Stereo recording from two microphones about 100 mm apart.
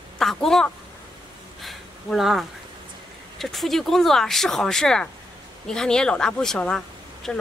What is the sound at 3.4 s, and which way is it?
Speech, centre (ahead or behind).